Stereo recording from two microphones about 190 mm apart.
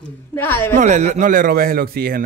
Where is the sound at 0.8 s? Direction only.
40° right (ahead or behind).